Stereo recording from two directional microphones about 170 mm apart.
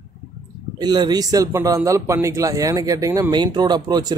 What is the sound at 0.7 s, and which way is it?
Speech, 25° right (ahead or behind).